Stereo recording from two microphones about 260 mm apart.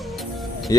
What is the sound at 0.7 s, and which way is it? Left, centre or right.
Speech, centre.